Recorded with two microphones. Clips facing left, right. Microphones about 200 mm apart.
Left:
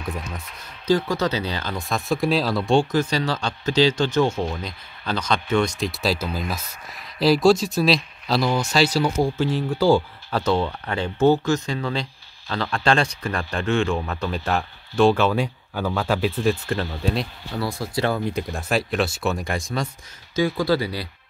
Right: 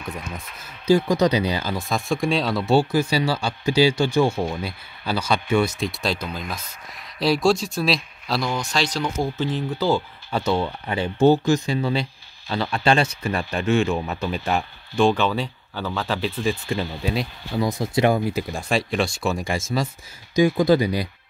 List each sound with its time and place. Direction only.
0.0 s speech: centre (ahead or behind)
0.8 s speech: 15° right (ahead or behind); by 10.0 s 10° left (ahead or behind)
10.3 s speech: centre (ahead or behind)
17.6 s speech: 20° right (ahead or behind); by 19.9 s centre (ahead or behind)
20.3 s speech: 15° right (ahead or behind)